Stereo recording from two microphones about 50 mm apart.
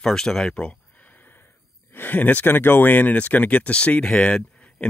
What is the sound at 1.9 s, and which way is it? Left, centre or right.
Speech, left.